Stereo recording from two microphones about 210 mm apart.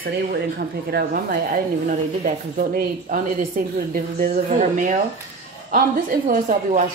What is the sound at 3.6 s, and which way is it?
Speech, 40° right (ahead or behind).